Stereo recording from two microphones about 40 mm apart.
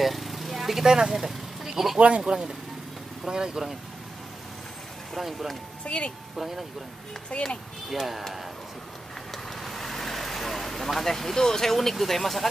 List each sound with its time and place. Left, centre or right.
0.0 s vehicle: centre
1.0 s speech: centre
2.0 s speech: right
3.3 s speech: centre
5.1 s speech: centre
5.9 s speech: left
6.3 s speech: centre
7.3 s speech: left
9.3 s vehicle: centre